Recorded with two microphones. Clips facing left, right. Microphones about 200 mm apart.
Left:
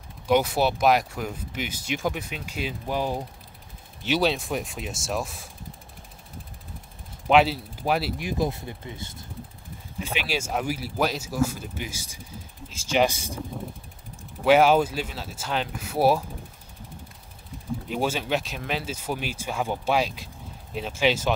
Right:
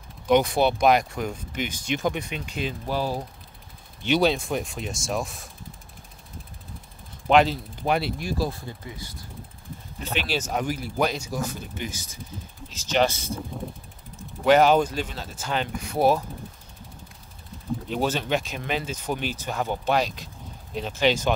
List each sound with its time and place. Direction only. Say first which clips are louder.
0.3 s speech: right 2 dB; 5° left (ahead or behind)
4.0 s speech: right 2 dB; 5° left (ahead or behind)
7.2 s speech: even; 5° left (ahead or behind)
8.2 s speech: left 1 dB; 20° left (ahead or behind)
9.9 s speech: right 1 dB; 10° left (ahead or behind)
17.8 s speech: right 1 dB; 10° left (ahead or behind)